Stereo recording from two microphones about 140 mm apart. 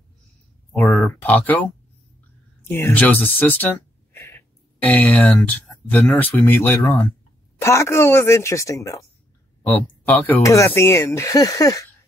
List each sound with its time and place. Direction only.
0.9 s speech: 10° left (ahead or behind)
2.7 s speech: 15° left (ahead or behind)
9.6 s speech: 10° left (ahead or behind)